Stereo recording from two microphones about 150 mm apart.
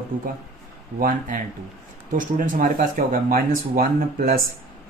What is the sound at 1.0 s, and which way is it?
Speech, 65° right (ahead or behind).